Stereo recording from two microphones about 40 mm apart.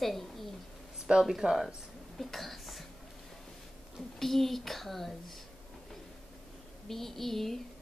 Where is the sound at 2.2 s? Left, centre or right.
Centre.